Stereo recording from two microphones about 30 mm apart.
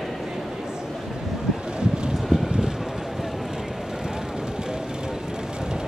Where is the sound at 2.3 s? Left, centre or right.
Right.